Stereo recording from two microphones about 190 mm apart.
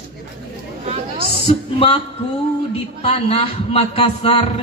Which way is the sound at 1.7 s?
30° left (ahead or behind).